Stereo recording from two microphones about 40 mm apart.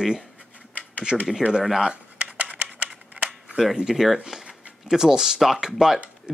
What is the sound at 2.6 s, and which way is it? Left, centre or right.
Scissors, right.